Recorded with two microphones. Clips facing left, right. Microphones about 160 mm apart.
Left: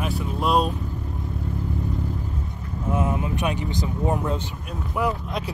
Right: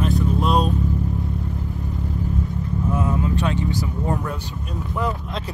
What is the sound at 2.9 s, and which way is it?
Vehicle, 20° left (ahead or behind).